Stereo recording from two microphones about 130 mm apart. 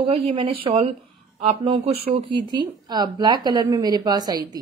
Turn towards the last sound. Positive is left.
turn(degrees=-30)  # may be behind; listen again after turning